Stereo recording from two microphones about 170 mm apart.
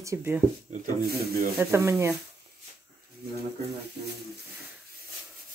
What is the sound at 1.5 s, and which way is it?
Speech, 15° right (ahead or behind).